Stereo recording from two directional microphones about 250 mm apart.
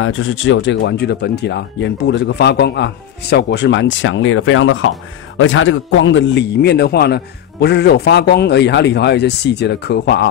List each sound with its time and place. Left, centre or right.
0.0 s speech: left